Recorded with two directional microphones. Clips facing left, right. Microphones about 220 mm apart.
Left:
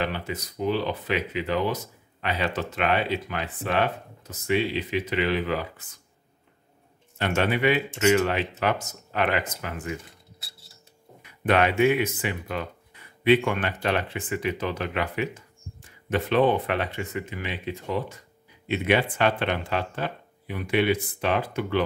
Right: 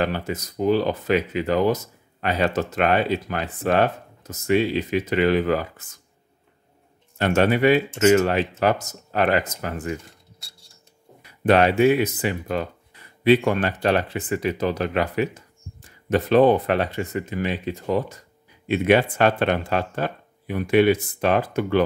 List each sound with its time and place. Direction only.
0.0 s speech: 45° right (ahead or behind)
7.2 s speech: 45° right (ahead or behind)
11.4 s speech: 35° right (ahead or behind)